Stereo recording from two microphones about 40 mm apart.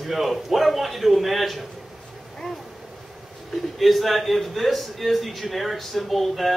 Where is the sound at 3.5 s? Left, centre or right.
Centre.